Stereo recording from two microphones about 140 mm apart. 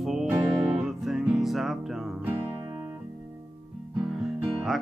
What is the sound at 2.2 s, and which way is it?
Music, 20° right (ahead or behind).